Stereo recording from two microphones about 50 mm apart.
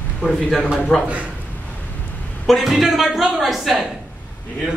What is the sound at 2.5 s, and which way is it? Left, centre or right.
A woman's voice, centre.